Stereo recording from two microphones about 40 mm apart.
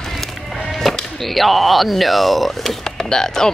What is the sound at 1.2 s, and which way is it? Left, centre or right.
Speech, centre.